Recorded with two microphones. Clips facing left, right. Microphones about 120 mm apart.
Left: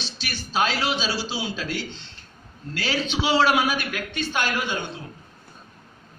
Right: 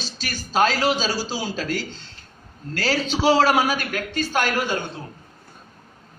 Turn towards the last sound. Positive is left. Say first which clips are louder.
# right 3 dB
turn(degrees=-40)  # may be behind; listen again after turning